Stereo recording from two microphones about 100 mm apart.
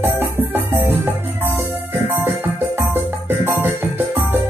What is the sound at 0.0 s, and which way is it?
Music, 20° right (ahead or behind).